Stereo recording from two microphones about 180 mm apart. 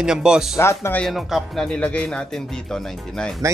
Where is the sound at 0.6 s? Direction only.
15° left (ahead or behind).